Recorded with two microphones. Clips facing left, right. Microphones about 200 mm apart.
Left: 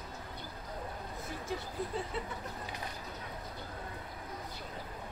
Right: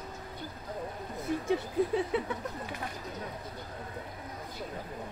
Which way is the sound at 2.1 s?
65° right (ahead or behind).